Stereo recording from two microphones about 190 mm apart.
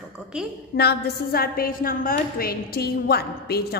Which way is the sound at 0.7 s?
60° left (ahead or behind).